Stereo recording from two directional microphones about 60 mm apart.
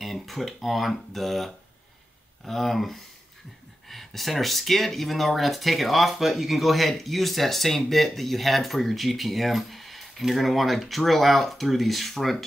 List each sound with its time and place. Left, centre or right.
0.0 s speech: centre